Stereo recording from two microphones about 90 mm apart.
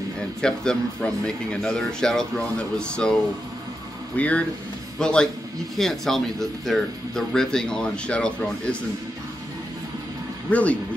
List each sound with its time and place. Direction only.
0.4 s speech: 10° left (ahead or behind)
4.2 s a man's voice: 15° left (ahead or behind)
10.5 s speech: 15° left (ahead or behind)